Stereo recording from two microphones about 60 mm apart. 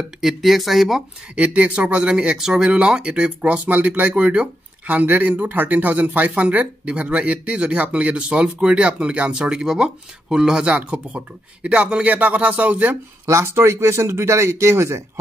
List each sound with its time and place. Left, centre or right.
0.2 s speech: centre
1.3 s speech: right
13.3 s speech: right